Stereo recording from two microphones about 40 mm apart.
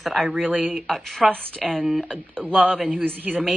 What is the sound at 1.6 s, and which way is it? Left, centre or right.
Speech, centre.